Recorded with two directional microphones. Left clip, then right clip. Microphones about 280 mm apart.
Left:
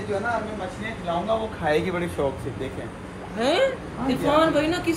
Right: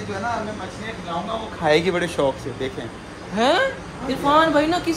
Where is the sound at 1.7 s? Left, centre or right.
Right.